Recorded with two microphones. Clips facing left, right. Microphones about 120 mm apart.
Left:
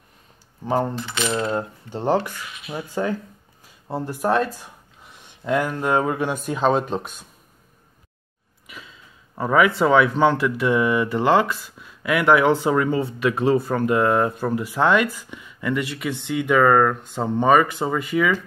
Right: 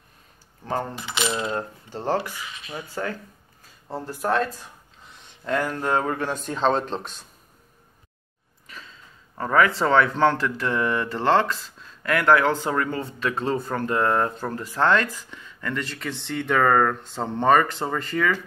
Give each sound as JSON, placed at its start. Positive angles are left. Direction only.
{"t": 1.5, "sound": "speech", "side_deg": 15}
{"t": 2.4, "sound": "speech", "side_deg": 10}
{"t": 2.9, "sound": "speech", "side_deg": 20}
{"t": 8.6, "sound": "a sound", "side_deg": 10}
{"t": 9.8, "sound": "speech", "side_deg": 10}